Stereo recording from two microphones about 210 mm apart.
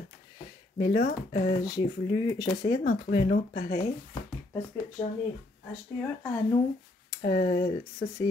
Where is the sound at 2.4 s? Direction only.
20° left (ahead or behind).